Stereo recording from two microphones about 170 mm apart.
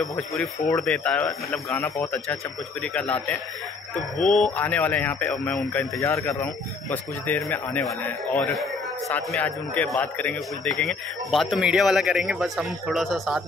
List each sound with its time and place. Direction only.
0.6 s speech: 15° left (ahead or behind)
0.8 s speech: 5° left (ahead or behind)
2.8 s speech: 5° left (ahead or behind)
5.9 s speech: 15° left (ahead or behind); by 13.4 s centre (ahead or behind)